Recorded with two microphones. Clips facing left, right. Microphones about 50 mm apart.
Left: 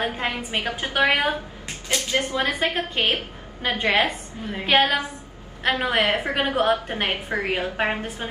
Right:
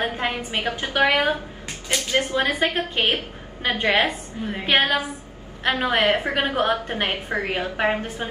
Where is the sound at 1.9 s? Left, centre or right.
Right.